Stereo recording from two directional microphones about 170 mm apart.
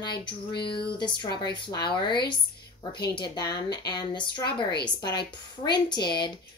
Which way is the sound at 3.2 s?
25° left (ahead or behind).